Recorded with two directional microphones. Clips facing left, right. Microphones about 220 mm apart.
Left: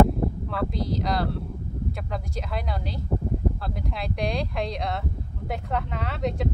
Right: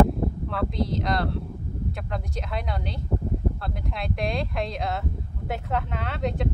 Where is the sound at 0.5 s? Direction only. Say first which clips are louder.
Right 1 dB; centre (ahead or behind).